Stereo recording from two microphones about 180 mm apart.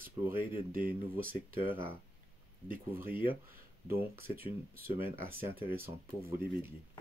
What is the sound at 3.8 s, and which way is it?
Speech, 15° right (ahead or behind).